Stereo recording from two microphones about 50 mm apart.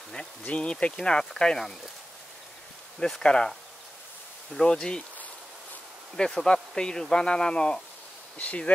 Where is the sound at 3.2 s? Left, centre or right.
Centre.